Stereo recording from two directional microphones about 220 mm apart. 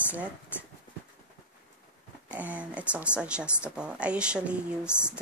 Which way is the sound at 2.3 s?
5° right (ahead or behind).